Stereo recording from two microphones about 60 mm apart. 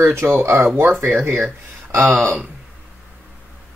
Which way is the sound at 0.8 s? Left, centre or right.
Right.